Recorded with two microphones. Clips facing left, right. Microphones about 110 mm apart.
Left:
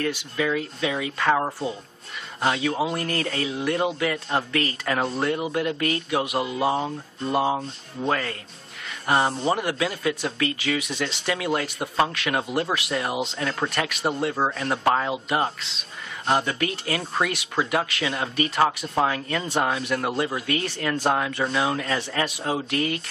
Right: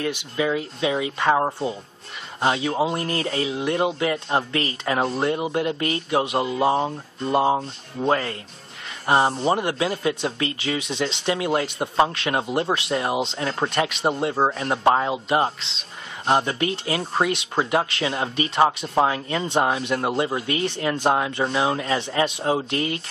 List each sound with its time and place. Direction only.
0.0 s speech: 20° right (ahead or behind)